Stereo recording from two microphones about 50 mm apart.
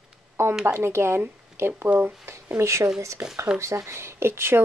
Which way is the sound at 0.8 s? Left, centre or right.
Right.